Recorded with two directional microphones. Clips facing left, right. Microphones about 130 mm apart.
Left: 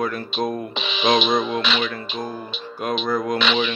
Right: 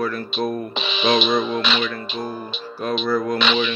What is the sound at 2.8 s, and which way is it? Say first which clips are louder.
Speech: right 1 dB; 15° left (ahead or behind).